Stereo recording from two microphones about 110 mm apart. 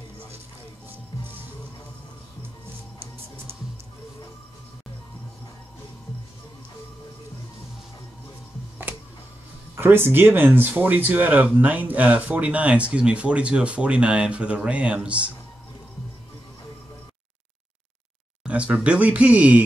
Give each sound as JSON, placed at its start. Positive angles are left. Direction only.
{"t": 9.8, "sound": "speech", "side_deg": -20}
{"t": 18.4, "sound": "speech", "side_deg": -10}